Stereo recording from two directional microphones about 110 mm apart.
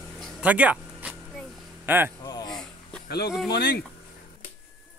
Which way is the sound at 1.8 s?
20° right (ahead or behind).